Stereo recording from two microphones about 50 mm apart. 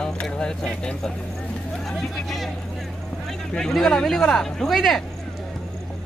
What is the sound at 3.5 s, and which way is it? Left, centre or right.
Speech, centre.